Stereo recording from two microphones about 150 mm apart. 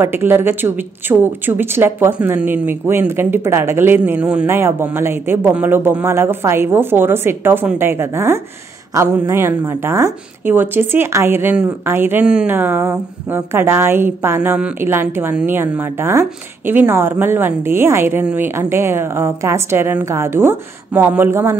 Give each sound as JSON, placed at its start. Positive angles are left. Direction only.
{"t": 0.0, "sound": "a woman's voice", "side_deg": -15}